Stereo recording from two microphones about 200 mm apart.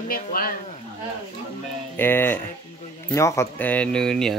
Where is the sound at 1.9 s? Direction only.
10° left (ahead or behind).